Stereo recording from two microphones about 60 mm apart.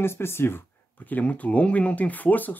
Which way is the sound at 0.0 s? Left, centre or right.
Left.